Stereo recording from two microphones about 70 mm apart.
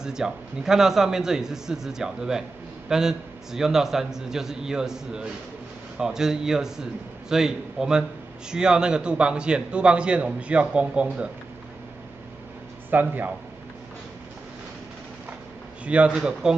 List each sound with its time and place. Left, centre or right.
0.0 s a man's voice: centre
12.9 s a man's voice: right
15.8 s a man's voice: centre